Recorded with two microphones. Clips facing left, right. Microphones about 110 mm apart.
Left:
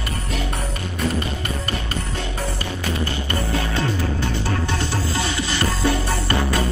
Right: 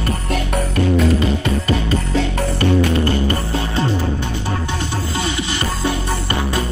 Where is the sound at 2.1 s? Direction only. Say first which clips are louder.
Right 7 dB; 70° right (ahead or behind).